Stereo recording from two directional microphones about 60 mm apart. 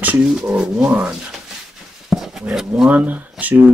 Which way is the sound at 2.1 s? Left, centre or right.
Centre.